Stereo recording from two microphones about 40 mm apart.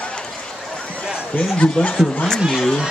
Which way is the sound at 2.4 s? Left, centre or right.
Centre.